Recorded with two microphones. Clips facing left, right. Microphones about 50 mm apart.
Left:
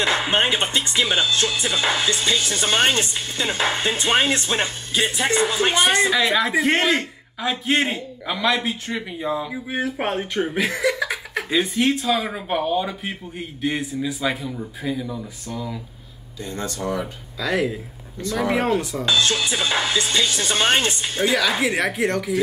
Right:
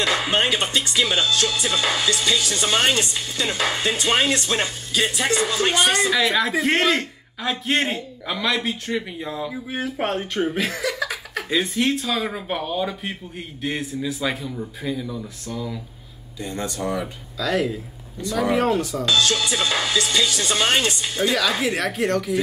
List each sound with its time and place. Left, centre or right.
0.0 s speech: left
6.1 s a man's voice: centre
11.5 s a man's voice: centre
16.4 s speech: centre
17.4 s a woman's voice: centre
19.0 s speech: left
21.6 s a woman's voice: centre